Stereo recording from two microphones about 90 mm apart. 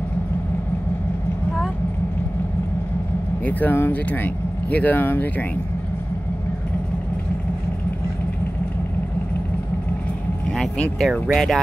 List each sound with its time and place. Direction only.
3.4 s speech: 20° left (ahead or behind)
10.6 s speech: 5° left (ahead or behind)